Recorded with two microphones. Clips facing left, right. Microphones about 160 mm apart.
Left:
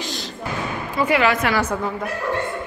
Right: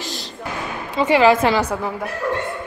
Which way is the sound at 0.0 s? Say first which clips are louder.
Left 1 dB; centre (ahead or behind).